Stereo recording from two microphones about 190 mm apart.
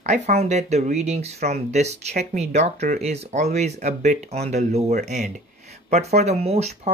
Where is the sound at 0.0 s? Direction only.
35° right (ahead or behind).